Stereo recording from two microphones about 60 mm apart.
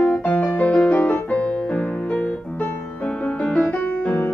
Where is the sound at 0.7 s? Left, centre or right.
Centre.